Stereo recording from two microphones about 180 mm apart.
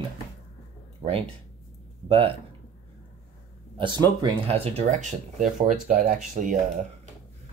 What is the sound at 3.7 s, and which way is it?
Speech, 25° right (ahead or behind).